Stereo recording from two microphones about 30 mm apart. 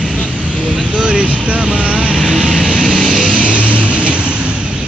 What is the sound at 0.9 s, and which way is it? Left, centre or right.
Vehicle, right.